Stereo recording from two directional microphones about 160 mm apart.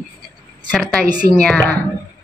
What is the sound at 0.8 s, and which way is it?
Speech, centre (ahead or behind).